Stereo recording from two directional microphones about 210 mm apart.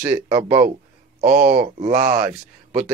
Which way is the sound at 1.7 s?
40° right (ahead or behind).